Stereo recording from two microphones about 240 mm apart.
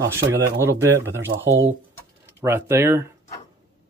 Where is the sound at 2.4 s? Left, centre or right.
Centre.